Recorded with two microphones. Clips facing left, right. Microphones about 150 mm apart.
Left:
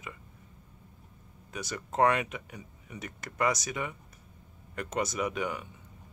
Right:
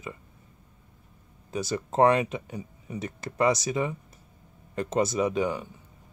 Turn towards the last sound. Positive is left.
turn(degrees=-30)  # may be behind; listen again after turning